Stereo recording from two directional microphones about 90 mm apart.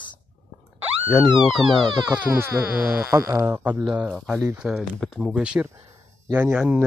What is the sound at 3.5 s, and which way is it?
Speech, 20° right (ahead or behind).